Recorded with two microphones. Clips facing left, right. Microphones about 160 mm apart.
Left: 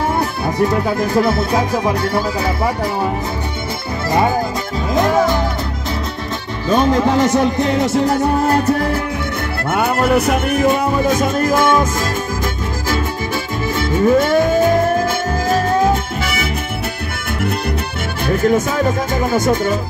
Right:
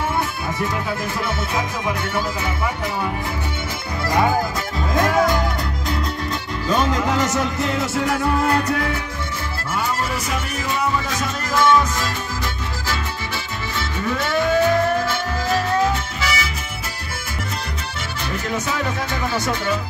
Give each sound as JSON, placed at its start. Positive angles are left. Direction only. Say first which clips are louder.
{"t": 0.2, "sound": "music", "louder": "left 7 dB", "side_deg": 40}
{"t": 4.9, "sound": "music", "louder": "left 3 dB", "side_deg": 25}
{"t": 6.7, "sound": "music", "louder": "left 6 dB", "side_deg": 30}
{"t": 9.7, "sound": "music", "louder": "left 9 dB", "side_deg": 65}
{"t": 13.7, "sound": "music", "louder": "left 11 dB", "side_deg": 45}
{"t": 18.2, "sound": "music", "louder": "left 11 dB", "side_deg": 50}